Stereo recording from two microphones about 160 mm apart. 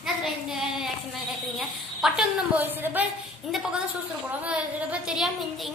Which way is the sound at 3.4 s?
Centre (ahead or behind).